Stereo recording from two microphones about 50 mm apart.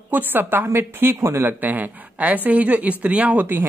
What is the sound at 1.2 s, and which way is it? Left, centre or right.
Speech, right.